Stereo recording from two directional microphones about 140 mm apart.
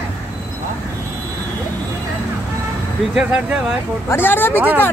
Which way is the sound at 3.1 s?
5° right (ahead or behind).